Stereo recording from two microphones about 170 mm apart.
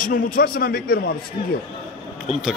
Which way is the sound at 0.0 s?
55° left (ahead or behind).